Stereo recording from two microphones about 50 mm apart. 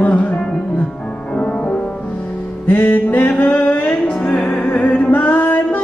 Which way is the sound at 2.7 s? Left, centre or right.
Left.